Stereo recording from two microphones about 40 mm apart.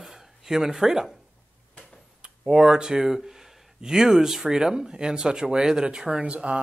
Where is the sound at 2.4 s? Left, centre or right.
Centre.